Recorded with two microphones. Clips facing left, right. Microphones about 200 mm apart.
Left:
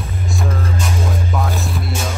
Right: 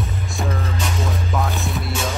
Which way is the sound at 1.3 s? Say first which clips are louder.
Left 1 dB; centre (ahead or behind).